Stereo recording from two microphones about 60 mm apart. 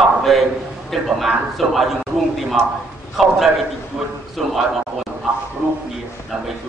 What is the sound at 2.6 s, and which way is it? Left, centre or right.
Speech, right.